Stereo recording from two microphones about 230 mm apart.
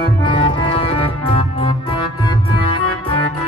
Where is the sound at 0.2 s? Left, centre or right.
Left.